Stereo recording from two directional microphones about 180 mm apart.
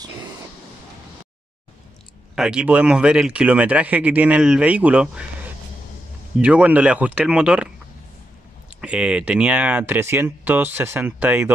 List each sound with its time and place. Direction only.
2.3 s speech: 5° right (ahead or behind)
8.8 s speech: 5° right (ahead or behind)